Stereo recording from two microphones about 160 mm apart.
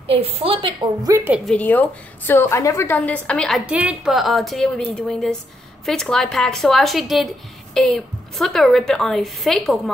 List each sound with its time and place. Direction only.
0.1 s a woman's voice: 35° right (ahead or behind)
1.0 s a woman's voice: 15° right (ahead or behind)
1.4 s a woman's voice: 10° left (ahead or behind)